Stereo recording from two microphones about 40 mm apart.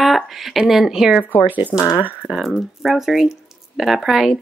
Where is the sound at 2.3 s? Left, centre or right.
Centre.